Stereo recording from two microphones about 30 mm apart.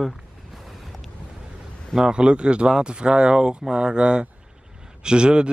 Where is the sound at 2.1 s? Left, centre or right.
Right.